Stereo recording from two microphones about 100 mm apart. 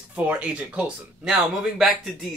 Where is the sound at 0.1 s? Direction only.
15° right (ahead or behind).